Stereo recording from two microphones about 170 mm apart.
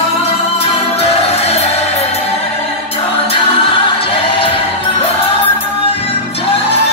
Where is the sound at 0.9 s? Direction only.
35° left (ahead or behind).